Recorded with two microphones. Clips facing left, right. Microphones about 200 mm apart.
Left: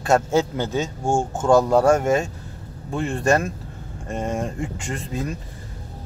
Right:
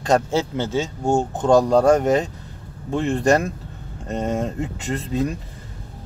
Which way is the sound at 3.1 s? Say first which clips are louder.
Right 2 dB; 35° right (ahead or behind).